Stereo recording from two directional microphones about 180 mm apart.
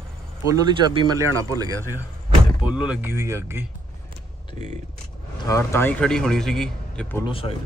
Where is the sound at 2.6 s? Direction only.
5° right (ahead or behind).